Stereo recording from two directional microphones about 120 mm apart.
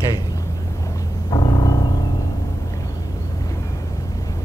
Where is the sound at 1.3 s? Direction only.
40° left (ahead or behind).